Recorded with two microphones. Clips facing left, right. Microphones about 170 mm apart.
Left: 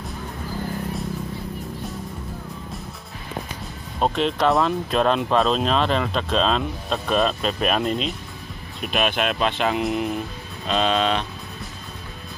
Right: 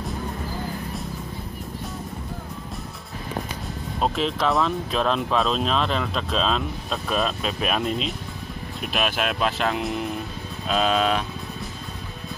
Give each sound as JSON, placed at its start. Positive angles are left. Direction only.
{"t": 4.0, "sound": "speech", "side_deg": 0}